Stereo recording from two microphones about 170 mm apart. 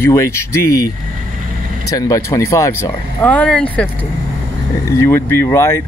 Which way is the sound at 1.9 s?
20° left (ahead or behind).